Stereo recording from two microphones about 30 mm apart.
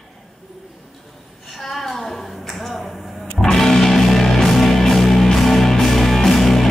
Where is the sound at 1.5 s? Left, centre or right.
Centre.